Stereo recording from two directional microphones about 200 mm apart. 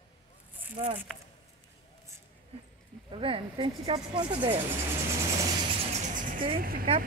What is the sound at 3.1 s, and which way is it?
Speech, 25° right (ahead or behind).